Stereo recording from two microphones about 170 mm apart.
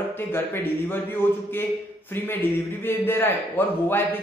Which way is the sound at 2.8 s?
10° left (ahead or behind).